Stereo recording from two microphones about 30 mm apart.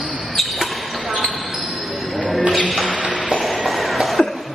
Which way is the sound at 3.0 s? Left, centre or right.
Right.